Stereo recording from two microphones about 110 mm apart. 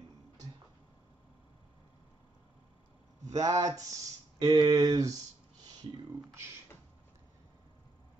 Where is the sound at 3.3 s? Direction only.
35° right (ahead or behind).